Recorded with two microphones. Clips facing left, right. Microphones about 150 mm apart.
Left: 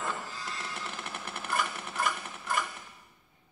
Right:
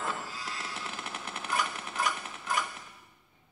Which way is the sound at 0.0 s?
Centre (ahead or behind).